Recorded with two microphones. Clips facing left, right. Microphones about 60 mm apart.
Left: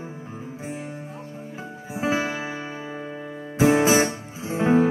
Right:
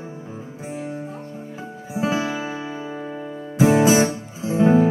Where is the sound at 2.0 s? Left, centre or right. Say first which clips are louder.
Right 2 dB; left.